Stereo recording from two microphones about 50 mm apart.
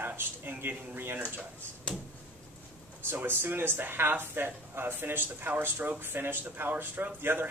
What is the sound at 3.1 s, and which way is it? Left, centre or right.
A man's voice, right.